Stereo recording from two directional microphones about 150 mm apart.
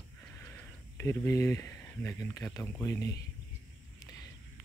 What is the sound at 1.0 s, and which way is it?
Speech, 15° left (ahead or behind).